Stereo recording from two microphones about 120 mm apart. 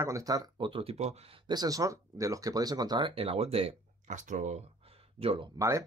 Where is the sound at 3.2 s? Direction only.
55° right (ahead or behind).